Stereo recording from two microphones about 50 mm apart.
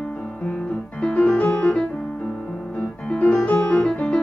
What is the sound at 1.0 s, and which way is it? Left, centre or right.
Music, left.